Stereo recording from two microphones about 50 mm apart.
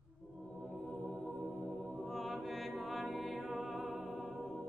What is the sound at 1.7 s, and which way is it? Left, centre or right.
Music, centre.